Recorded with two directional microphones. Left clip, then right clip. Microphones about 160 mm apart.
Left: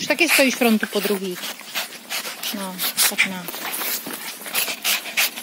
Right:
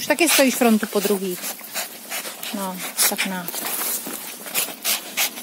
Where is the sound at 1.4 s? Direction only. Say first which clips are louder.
Left 2 dB; 30° right (ahead or behind).